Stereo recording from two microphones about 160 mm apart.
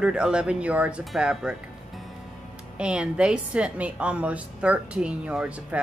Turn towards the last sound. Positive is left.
turn(degrees=-5)  # may be behind; listen again after turning